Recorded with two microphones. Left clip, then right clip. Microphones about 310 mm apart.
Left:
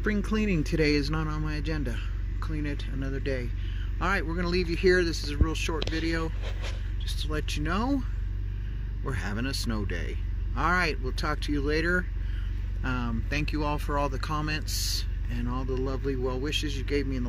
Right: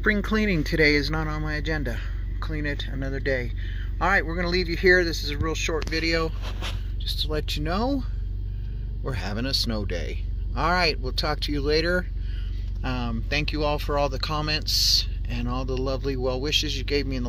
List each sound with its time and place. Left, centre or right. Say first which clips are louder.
0.0 s speech: right 6 dB; centre
4.6 s speech: right 1 dB; left
5.7 s speech: right 8 dB; centre